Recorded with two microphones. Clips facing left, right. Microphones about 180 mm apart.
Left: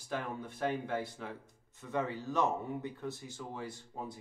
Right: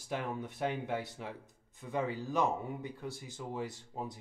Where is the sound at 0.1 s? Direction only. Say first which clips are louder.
Right 1 dB; 20° right (ahead or behind).